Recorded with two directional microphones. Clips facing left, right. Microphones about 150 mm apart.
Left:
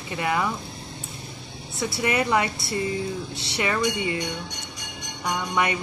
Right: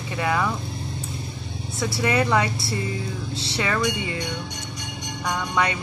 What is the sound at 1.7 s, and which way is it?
A woman's voice, 20° left (ahead or behind).